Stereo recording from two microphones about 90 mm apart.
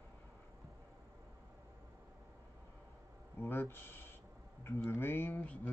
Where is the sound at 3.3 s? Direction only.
25° left (ahead or behind).